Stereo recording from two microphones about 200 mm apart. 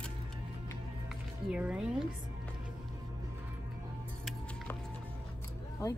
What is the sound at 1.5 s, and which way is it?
Speech, 5° right (ahead or behind).